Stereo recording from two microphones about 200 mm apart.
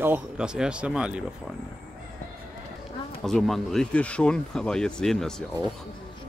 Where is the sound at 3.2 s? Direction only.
Centre (ahead or behind).